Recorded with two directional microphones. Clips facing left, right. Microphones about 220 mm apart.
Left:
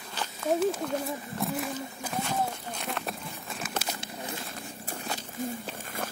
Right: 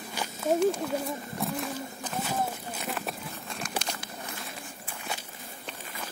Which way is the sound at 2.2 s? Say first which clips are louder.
Right 1 dB; 5° right (ahead or behind).